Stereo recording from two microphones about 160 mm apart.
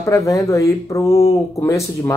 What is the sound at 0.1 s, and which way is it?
Speech, 20° left (ahead or behind).